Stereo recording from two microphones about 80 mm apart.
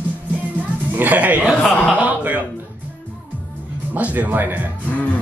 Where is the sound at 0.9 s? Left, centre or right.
Right.